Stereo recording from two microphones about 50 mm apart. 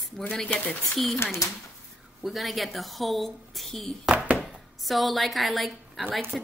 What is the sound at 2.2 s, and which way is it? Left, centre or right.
A woman's voice, centre.